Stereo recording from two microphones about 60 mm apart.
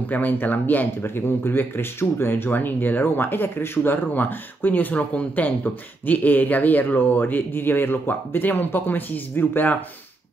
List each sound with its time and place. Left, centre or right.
0.1 s speech: left